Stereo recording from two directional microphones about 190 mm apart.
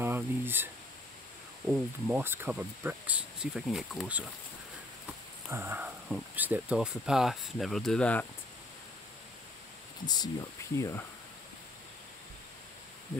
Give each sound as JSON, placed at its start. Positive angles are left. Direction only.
{"t": 0.0, "sound": "a sound", "side_deg": -10}
{"t": 1.7, "sound": "speech", "side_deg": -10}
{"t": 5.5, "sound": "speech", "side_deg": -10}
{"t": 10.0, "sound": "speech", "side_deg": 20}